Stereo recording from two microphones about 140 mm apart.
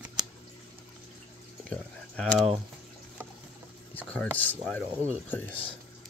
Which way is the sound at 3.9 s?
10° left (ahead or behind).